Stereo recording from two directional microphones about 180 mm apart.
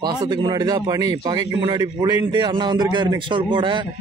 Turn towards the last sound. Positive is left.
turn(degrees=-25)  # may be behind; listen again after turning